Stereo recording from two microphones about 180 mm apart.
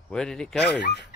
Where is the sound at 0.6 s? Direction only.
70° left (ahead or behind).